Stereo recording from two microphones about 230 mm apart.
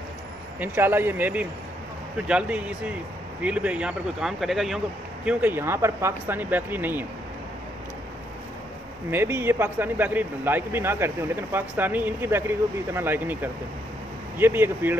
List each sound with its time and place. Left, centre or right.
0.6 s speech: centre
9.1 s speech: centre